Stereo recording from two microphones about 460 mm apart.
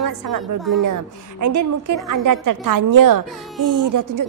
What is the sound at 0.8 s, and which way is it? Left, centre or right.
A woman's voice, right.